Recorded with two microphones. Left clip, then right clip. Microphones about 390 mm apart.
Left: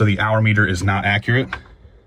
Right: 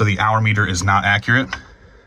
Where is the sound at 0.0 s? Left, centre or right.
Centre.